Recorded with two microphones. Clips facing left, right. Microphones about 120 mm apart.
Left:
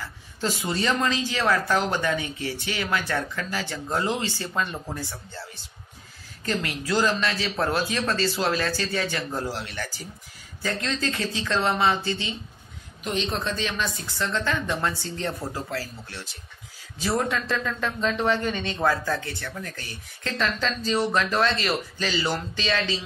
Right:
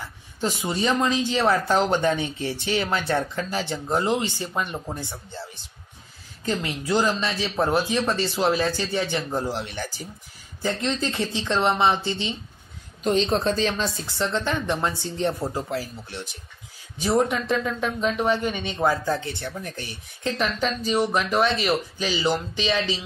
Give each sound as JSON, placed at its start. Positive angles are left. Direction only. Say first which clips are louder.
{"t": 0.0, "sound": "speech", "louder": "right 1 dB", "side_deg": -20}
{"t": 13.0, "sound": "speech", "louder": "right 6 dB", "side_deg": -35}